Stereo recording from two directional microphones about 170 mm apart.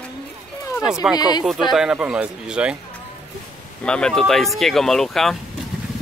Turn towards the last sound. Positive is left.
turn(degrees=0)  # may be behind; listen again after turning